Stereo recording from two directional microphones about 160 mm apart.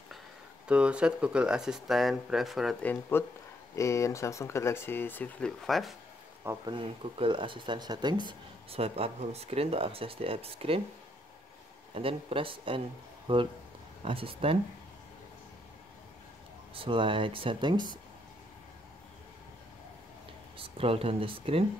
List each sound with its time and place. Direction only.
0.7 s speech: 5° right (ahead or behind)
2.8 s speech: 10° left (ahead or behind)
6.4 s speech: 15° right (ahead or behind)
6.7 s speech: 30° right (ahead or behind)
11.9 s speech: 35° right (ahead or behind)
16.7 s speech: 35° right (ahead or behind)
20.5 s speech: 35° right (ahead or behind)